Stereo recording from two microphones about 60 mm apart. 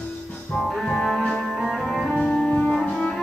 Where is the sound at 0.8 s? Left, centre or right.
Centre.